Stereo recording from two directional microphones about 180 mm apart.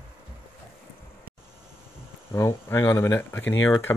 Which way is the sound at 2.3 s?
15° left (ahead or behind).